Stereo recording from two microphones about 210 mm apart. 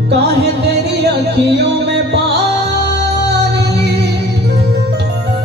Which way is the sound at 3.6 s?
50° right (ahead or behind).